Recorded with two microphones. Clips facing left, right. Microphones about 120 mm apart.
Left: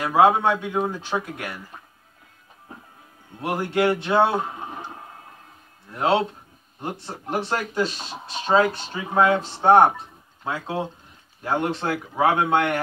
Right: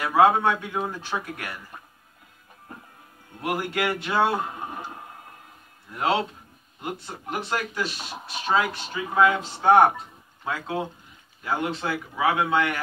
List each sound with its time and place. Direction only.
0.0 s speech: 20° left (ahead or behind)
3.3 s speech: 25° left (ahead or behind)
5.9 s speech: 30° left (ahead or behind)
11.4 s speech: 45° left (ahead or behind)